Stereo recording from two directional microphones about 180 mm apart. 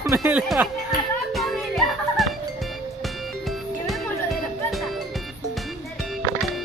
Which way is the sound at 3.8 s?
Centre (ahead or behind).